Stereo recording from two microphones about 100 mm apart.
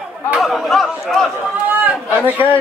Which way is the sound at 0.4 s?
Centre (ahead or behind).